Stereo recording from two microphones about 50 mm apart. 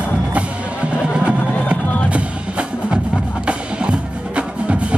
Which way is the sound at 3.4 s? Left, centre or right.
Right.